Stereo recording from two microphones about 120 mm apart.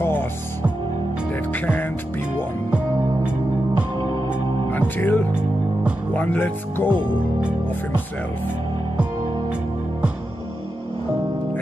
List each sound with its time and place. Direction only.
0.0 s music: 15° left (ahead or behind)
4.6 s music: 15° left (ahead or behind)
6.1 s speech: 15° left (ahead or behind)